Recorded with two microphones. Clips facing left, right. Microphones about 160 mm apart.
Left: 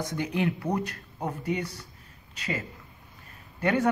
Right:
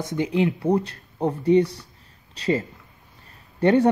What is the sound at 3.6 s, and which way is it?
Speech, 30° right (ahead or behind).